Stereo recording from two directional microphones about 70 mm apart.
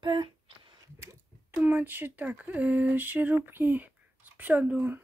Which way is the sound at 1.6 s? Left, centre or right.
Right.